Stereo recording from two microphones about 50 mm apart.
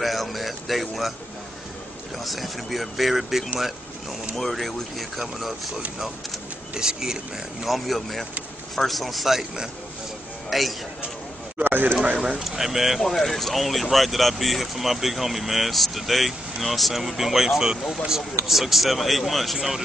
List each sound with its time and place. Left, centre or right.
0.0 s speech: centre
2.1 s speech: centre
6.7 s speech: centre
7.6 s speech: centre
11.5 s speech: right
12.4 s speech: centre